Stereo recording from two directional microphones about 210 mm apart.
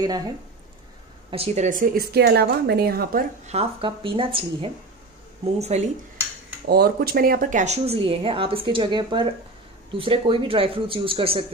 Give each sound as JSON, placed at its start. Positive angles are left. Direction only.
{"t": 0.0, "sound": "speech", "side_deg": -20}
{"t": 1.3, "sound": "speech", "side_deg": -30}
{"t": 3.5, "sound": "speech", "side_deg": -25}
{"t": 6.7, "sound": "speech", "side_deg": -45}